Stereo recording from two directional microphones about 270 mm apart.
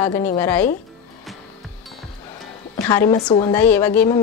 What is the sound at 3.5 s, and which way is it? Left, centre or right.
Speech, centre.